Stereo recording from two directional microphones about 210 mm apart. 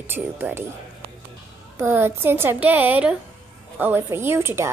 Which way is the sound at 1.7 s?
10° right (ahead or behind).